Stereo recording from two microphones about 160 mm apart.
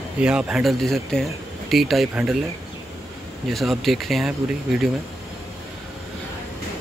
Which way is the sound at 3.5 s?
Centre (ahead or behind).